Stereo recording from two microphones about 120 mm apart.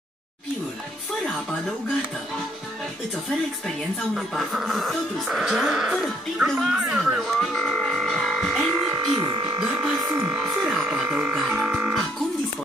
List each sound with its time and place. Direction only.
4.1 s speech: 5° right (ahead or behind)
7.3 s music: 5° left (ahead or behind)
8.9 s speech: 25° right (ahead or behind)
9.6 s a sound: 10° right (ahead or behind)
10.1 s music: 10° right (ahead or behind)